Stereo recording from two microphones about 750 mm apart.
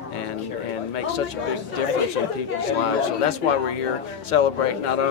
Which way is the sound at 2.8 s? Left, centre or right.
Left.